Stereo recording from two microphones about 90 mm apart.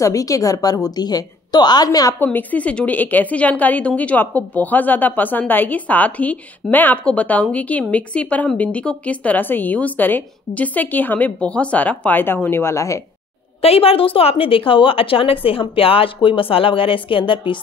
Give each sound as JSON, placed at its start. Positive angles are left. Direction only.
{"t": 0.0, "sound": "a woman's voice", "side_deg": 40}
{"t": 2.1, "sound": "a woman's voice", "side_deg": 20}
{"t": 13.6, "sound": "a woman's voice", "side_deg": 90}